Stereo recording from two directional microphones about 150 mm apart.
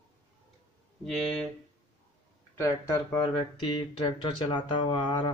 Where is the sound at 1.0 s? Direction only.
5° left (ahead or behind).